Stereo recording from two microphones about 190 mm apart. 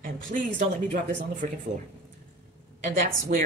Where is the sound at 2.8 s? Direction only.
45° right (ahead or behind).